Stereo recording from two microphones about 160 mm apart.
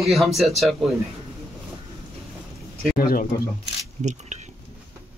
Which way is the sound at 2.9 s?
65° left (ahead or behind).